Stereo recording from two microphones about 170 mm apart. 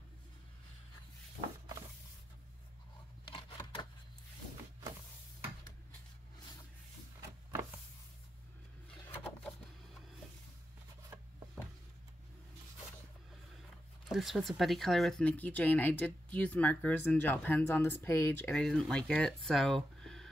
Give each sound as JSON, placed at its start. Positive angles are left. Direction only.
{"t": 3.3, "sound": "scissors", "side_deg": 30}
{"t": 9.1, "sound": "wood", "side_deg": 10}
{"t": 11.1, "sound": "rub", "side_deg": -15}
{"t": 14.1, "sound": "speech", "side_deg": 0}